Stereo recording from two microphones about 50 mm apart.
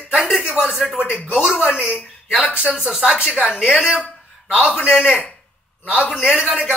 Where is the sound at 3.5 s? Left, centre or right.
Centre.